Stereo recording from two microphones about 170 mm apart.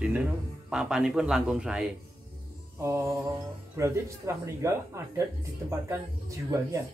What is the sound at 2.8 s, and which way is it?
Speech, 15° right (ahead or behind).